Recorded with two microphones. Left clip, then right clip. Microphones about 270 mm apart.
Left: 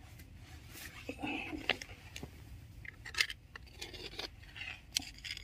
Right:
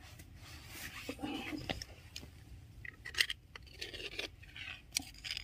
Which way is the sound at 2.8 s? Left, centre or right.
Centre.